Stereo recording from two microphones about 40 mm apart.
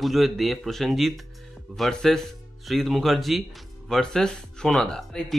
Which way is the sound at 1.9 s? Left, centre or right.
Centre.